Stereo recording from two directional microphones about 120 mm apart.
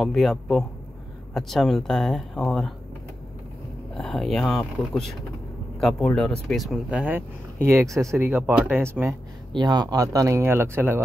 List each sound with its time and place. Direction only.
0.0 s speech: centre (ahead or behind)
3.9 s speech: 5° left (ahead or behind)
7.0 s speech: 15° right (ahead or behind)
9.5 s speech: 35° right (ahead or behind); by 11.0 s 20° right (ahead or behind)